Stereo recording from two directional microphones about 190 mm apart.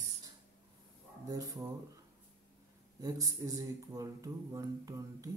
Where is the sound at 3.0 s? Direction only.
20° right (ahead or behind).